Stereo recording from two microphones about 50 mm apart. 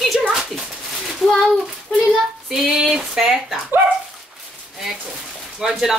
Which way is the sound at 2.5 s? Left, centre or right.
Centre.